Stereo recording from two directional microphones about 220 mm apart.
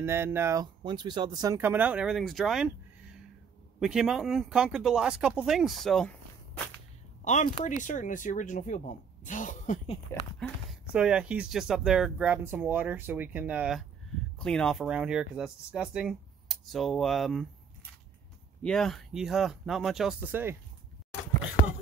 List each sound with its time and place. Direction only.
0.0 s speech: 10° right (ahead or behind); by 6.7 s 5° left (ahead or behind)
7.2 s speech: 30° left (ahead or behind)
10.7 s speech: 5° right (ahead or behind)
18.6 s speech: centre (ahead or behind)